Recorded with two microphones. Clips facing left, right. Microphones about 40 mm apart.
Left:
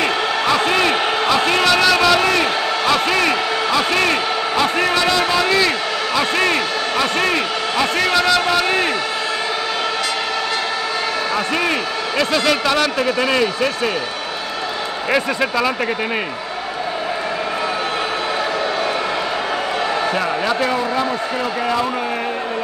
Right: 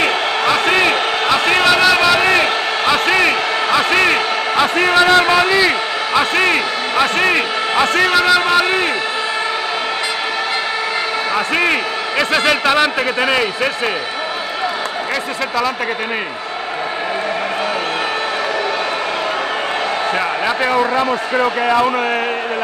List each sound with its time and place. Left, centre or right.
0.7 s a sound: right
2.1 s speech: right
5.7 s a man's voice: centre
11.3 s a man's voice: right